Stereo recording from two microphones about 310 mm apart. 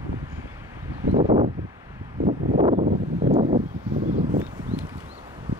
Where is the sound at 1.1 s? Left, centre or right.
Centre.